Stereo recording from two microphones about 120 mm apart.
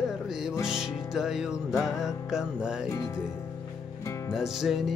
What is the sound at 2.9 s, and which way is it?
Speech, 25° left (ahead or behind).